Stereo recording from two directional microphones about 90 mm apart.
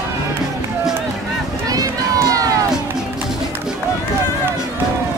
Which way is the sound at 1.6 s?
40° right (ahead or behind).